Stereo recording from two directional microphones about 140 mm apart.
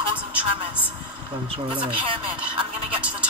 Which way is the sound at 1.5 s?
40° right (ahead or behind).